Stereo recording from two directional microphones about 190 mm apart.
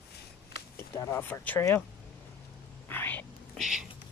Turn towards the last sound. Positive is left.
turn(degrees=-5)  # may be behind; listen again after turning